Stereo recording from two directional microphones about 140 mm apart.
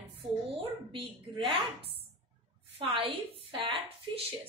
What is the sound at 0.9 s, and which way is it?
Speech, 40° right (ahead or behind).